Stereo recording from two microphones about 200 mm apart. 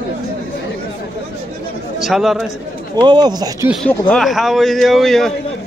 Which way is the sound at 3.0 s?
20° right (ahead or behind).